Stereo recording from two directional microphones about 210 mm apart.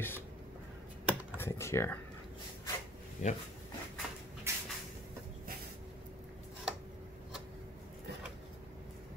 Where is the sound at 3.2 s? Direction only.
35° left (ahead or behind).